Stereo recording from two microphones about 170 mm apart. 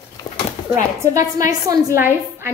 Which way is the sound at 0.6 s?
30° left (ahead or behind).